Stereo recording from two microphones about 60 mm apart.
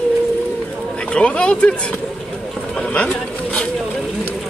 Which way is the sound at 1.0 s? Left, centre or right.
Centre.